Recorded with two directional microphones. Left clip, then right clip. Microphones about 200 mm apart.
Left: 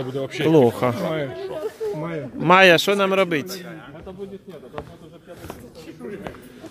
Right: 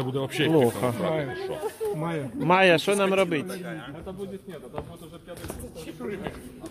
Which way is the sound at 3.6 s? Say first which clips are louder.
Right 1 dB; 40° right (ahead or behind).